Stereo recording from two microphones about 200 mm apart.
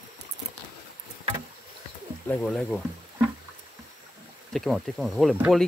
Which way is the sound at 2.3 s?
5° left (ahead or behind).